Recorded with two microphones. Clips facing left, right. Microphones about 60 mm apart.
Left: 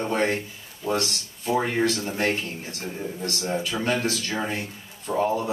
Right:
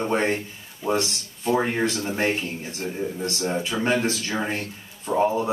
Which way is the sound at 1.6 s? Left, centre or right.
Centre.